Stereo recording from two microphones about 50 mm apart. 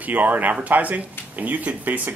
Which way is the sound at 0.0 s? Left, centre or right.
Right.